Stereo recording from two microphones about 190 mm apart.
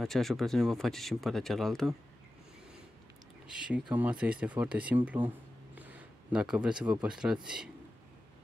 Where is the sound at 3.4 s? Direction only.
5° right (ahead or behind).